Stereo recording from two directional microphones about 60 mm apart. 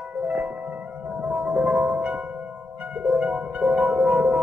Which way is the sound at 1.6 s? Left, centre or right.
Centre.